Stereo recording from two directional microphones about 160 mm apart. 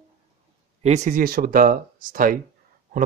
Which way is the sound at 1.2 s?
65° right (ahead or behind).